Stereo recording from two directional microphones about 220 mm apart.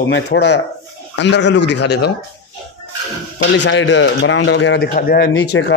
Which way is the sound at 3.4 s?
55° left (ahead or behind).